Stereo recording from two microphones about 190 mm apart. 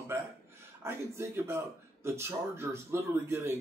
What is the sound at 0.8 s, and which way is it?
A man's voice, 10° right (ahead or behind).